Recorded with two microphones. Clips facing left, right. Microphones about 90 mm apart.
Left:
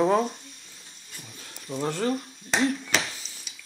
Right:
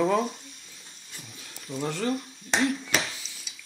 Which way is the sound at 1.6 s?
30° left (ahead or behind).